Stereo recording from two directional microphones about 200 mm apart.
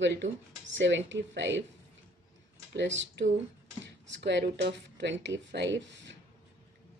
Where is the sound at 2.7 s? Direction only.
60° right (ahead or behind).